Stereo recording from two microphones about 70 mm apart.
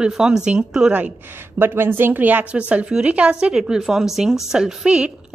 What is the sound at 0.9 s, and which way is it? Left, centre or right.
A woman's voice, right.